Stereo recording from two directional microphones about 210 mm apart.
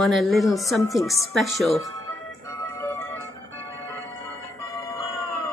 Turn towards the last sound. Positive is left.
turn(degrees=15)  # may be behind; listen again after turning